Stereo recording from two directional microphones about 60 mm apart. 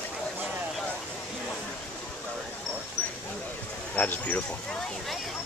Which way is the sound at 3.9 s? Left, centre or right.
Left.